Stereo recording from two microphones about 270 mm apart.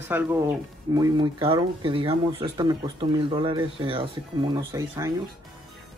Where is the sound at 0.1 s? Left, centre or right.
Centre.